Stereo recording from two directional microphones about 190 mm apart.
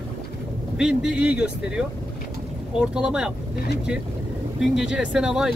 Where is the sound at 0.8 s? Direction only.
5° right (ahead or behind).